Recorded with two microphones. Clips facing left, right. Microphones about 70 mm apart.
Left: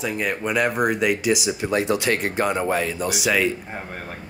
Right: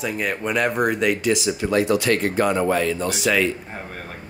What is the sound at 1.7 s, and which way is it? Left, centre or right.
Speech, left.